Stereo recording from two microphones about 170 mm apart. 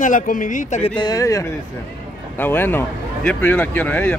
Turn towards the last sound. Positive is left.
turn(degrees=10)  # may be behind; listen again after turning